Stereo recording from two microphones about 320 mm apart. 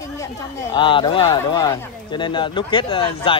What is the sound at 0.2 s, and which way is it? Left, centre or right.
Speech, centre.